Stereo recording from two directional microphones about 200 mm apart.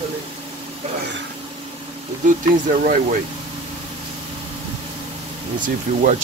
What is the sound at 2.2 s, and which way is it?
Speech, 40° right (ahead or behind).